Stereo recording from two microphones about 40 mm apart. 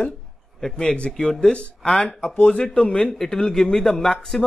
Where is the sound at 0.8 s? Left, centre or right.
Left.